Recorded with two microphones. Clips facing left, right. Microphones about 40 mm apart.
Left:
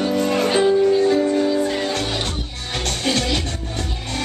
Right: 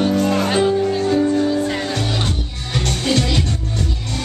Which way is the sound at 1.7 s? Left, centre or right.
Centre.